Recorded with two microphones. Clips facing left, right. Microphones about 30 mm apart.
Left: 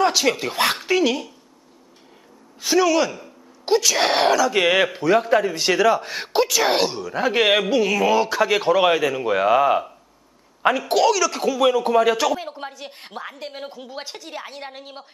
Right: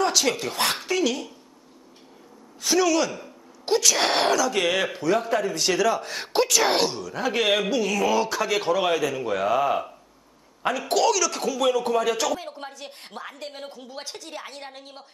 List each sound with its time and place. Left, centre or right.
0.0 s speech: centre
2.6 s speech: centre
10.9 s speech: centre